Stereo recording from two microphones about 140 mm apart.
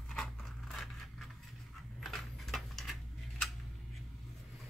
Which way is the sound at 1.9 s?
Centre (ahead or behind).